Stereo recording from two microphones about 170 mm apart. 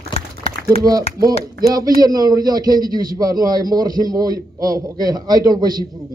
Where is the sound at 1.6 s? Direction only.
20° right (ahead or behind).